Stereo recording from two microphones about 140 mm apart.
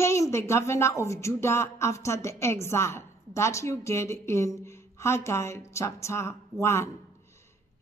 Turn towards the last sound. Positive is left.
turn(degrees=20)  # may be behind; listen again after turning